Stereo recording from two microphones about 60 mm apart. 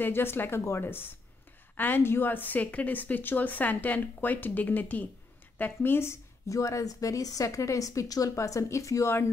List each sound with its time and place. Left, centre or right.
0.0 s a woman's voice: left
6.4 s a woman's voice: left